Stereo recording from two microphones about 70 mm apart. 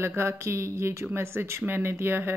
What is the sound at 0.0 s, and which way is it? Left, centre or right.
A woman's voice, right.